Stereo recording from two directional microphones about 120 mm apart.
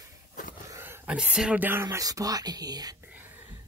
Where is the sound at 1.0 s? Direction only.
5° right (ahead or behind); by 2.9 s 30° right (ahead or behind).